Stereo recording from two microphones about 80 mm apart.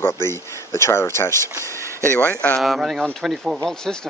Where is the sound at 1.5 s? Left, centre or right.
Right.